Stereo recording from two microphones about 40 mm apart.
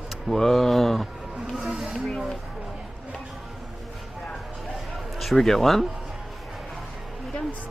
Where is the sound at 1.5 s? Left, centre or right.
Centre.